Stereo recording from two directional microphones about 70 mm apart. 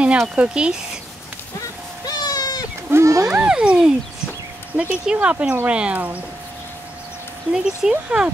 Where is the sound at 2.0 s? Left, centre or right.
Left.